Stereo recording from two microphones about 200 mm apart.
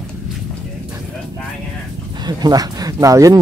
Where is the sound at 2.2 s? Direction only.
20° right (ahead or behind).